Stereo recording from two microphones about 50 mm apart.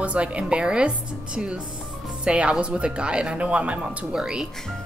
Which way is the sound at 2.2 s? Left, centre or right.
Right.